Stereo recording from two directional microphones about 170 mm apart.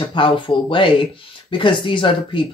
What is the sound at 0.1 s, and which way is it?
Speech, 30° left (ahead or behind).